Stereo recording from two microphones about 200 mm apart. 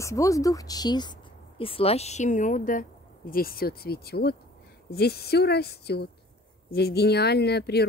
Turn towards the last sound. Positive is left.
turn(degrees=55)  # may be behind; listen again after turning